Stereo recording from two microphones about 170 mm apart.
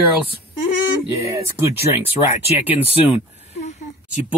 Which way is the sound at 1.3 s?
15° right (ahead or behind).